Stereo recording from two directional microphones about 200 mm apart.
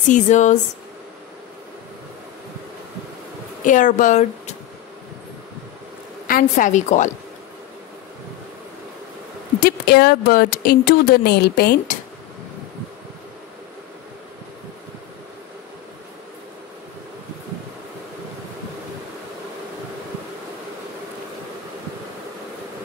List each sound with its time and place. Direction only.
0.1 s speech: 35° left (ahead or behind)
3.6 s speech: 40° left (ahead or behind)
6.2 s speech: 45° left (ahead or behind)
9.6 s speech: 50° left (ahead or behind)